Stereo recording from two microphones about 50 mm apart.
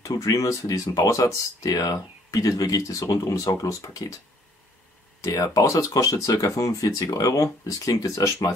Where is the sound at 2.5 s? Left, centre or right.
Left.